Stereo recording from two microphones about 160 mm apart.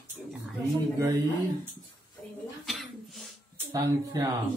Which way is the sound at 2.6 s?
Centre (ahead or behind).